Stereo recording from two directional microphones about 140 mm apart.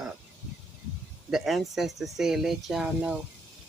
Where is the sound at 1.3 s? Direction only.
Centre (ahead or behind).